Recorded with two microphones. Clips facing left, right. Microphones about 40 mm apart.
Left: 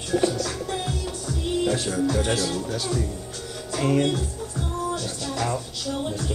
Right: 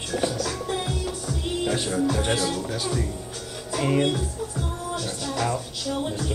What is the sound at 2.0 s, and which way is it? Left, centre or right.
Music, centre.